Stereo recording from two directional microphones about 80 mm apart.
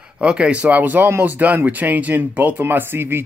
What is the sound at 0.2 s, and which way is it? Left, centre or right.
Speech, centre.